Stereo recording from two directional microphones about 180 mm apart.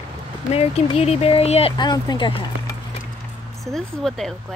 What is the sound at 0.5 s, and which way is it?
Speech, 35° left (ahead or behind).